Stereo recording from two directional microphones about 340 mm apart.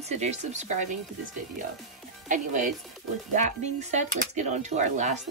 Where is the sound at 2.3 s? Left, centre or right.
Right.